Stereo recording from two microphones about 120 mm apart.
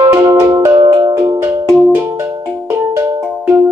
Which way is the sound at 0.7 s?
40° right (ahead or behind).